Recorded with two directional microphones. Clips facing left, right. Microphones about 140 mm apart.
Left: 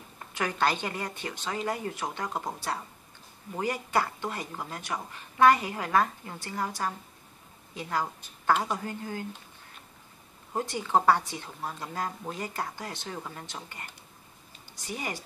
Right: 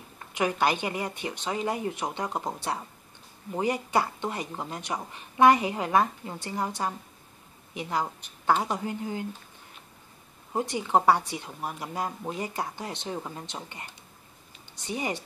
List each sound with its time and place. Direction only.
0.3 s a woman's voice: 15° right (ahead or behind)
10.5 s speech: 15° right (ahead or behind)
14.9 s speech: 20° right (ahead or behind)